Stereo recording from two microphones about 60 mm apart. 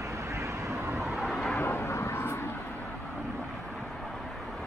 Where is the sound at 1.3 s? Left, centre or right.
Centre.